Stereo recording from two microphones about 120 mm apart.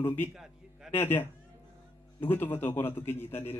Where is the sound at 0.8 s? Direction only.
20° left (ahead or behind).